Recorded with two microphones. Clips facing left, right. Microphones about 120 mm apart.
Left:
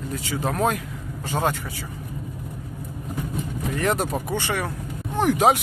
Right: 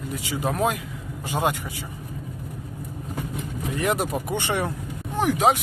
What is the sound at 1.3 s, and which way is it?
Speech, 15° right (ahead or behind).